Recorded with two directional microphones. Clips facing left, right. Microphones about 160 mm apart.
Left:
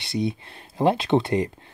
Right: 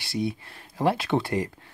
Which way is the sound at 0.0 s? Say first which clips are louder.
Left 2 dB; 20° left (ahead or behind).